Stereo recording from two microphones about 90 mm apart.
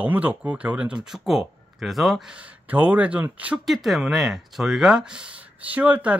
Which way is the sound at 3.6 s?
Centre (ahead or behind).